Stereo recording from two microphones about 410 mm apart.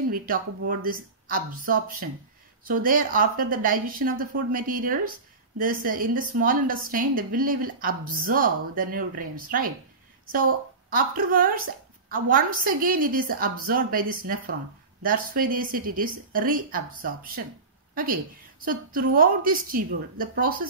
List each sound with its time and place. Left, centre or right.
0.1 s a woman's voice: right
10.9 s a woman's voice: right